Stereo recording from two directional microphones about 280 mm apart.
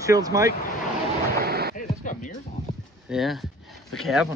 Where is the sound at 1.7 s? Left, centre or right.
Left.